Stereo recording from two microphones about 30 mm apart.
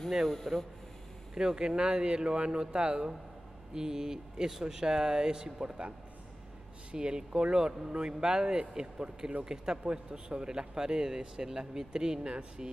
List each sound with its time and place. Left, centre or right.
0.3 s speech: centre
1.3 s a man's voice: right
6.9 s a man's voice: right